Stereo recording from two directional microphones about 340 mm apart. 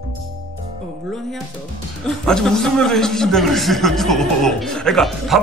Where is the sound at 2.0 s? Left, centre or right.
Centre.